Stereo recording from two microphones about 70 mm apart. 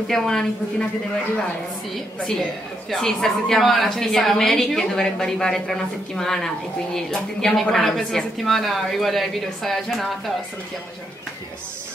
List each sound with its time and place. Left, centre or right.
0.1 s speech: centre
2.9 s a woman's voice: centre